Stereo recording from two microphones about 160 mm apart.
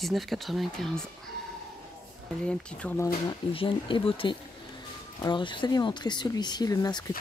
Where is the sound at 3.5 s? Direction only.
35° left (ahead or behind).